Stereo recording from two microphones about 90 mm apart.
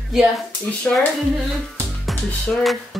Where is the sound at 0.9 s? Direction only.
10° left (ahead or behind).